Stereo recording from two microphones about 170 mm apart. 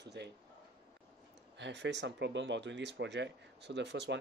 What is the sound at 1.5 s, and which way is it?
Speech, 90° right.